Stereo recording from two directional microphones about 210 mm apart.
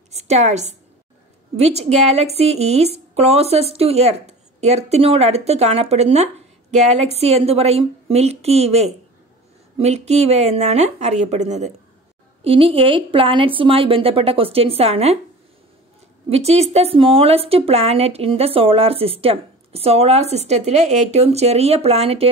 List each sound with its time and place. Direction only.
0.1 s a woman's voice: 30° right (ahead or behind)
16.3 s a woman's voice: 30° right (ahead or behind)